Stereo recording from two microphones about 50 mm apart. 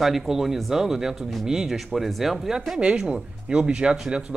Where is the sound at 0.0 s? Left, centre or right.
Centre.